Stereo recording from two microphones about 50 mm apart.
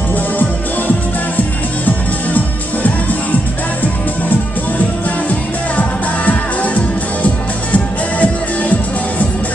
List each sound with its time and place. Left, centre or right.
0.1 s music: left
5.8 s music: left